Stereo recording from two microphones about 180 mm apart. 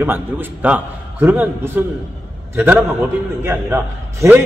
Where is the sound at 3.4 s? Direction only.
15° right (ahead or behind).